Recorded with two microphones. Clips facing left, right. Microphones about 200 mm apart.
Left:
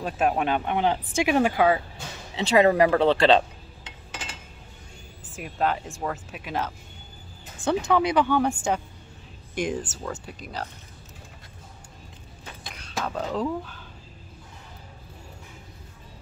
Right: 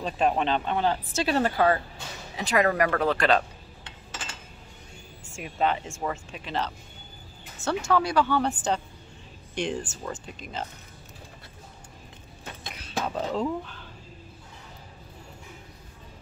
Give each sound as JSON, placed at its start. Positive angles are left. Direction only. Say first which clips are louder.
{"t": 0.0, "sound": "speech", "louder": "left 1 dB", "side_deg": 5}
{"t": 2.3, "sound": "speech", "louder": "left 5 dB", "side_deg": 25}
{"t": 5.3, "sound": "speech", "louder": "even", "side_deg": 0}
{"t": 7.6, "sound": "speech", "louder": "left 4 dB", "side_deg": 30}
{"t": 7.9, "sound": "speech", "louder": "left 1 dB", "side_deg": 20}
{"t": 12.7, "sound": "speech", "louder": "even", "side_deg": -5}